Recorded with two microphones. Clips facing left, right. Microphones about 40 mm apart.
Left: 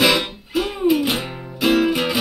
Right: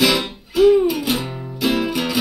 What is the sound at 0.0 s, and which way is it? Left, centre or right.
Music, centre.